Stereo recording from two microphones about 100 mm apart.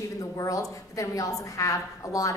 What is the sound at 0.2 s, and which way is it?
A woman's voice, 35° left (ahead or behind).